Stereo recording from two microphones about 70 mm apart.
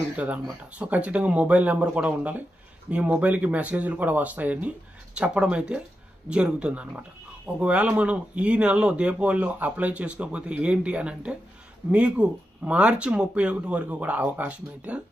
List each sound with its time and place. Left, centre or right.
0.1 s speech: centre